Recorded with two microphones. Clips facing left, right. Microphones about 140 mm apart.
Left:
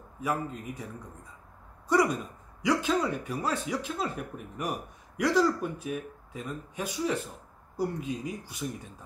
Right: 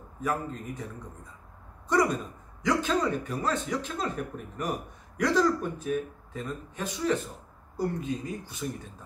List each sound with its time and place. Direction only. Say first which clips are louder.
0.2 s speech: right 1 dB; 10° left (ahead or behind)
1.9 s a sound: even; 10° left (ahead or behind)
2.6 s speech: even; 10° left (ahead or behind)